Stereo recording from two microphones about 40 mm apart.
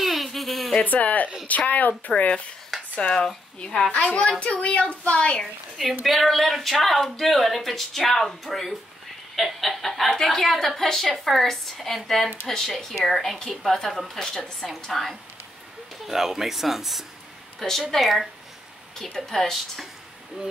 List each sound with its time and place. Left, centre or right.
0.0 s a sound: centre
0.8 s speech: left
2.7 s a sound: centre
3.5 s a woman's voice: left
5.4 s a woman's voice: centre
16.1 s speech: centre
17.6 s speech: centre
18.0 s speech: centre
18.9 s a woman's voice: centre